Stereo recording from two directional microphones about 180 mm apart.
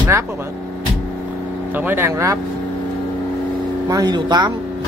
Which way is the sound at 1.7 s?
10° right (ahead or behind).